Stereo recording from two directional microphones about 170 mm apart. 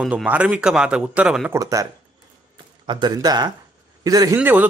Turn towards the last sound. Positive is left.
turn(degrees=-10)  # may be behind; listen again after turning